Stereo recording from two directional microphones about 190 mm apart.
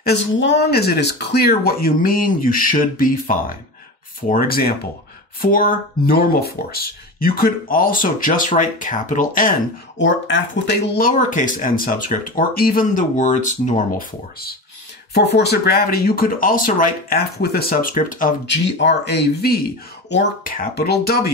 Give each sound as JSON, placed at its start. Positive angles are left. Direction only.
{"t": 0.0, "sound": "speech", "side_deg": 65}
{"t": 9.9, "sound": "speech", "side_deg": 75}
{"t": 11.0, "sound": "speech", "side_deg": 45}
{"t": 15.1, "sound": "speech", "side_deg": 60}
{"t": 18.5, "sound": "speech", "side_deg": 65}